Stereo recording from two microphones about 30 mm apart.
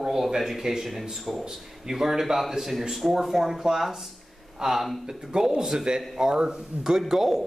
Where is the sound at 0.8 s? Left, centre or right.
Centre.